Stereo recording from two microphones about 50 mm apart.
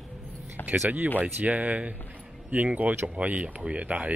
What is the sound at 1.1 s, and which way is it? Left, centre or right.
Speech, right.